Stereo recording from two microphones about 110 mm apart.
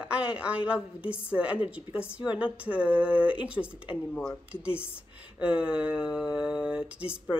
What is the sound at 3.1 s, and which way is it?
Speech, 55° left (ahead or behind).